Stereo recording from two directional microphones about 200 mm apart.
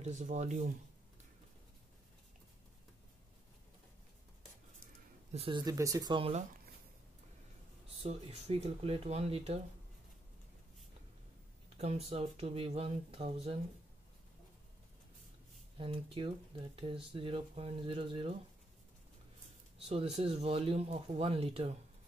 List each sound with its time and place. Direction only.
0.0 s speech: 40° right (ahead or behind)
5.3 s speech: 25° right (ahead or behind)
8.0 s speech: 30° right (ahead or behind)
11.8 s speech: 30° right (ahead or behind)
15.8 s speech: 25° right (ahead or behind)
19.9 s speech: 30° right (ahead or behind)